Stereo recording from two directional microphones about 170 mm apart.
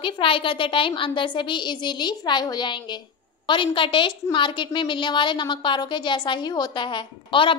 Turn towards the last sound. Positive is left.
turn(degrees=30)  # may be behind; listen again after turning